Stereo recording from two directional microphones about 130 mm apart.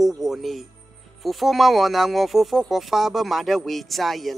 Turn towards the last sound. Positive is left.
turn(degrees=0)  # may be behind; listen again after turning